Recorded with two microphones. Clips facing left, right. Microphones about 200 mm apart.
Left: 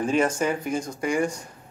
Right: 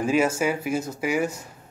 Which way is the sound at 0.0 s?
5° right (ahead or behind).